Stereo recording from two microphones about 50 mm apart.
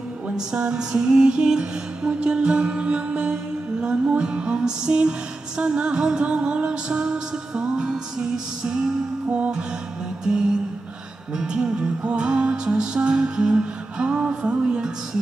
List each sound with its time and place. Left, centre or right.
0.5 s music: centre
9.3 s music: right